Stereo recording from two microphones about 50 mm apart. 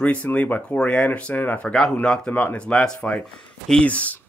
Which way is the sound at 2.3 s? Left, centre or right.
Left.